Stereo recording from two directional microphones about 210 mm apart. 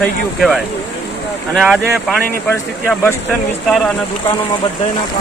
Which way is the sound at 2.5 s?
10° left (ahead or behind).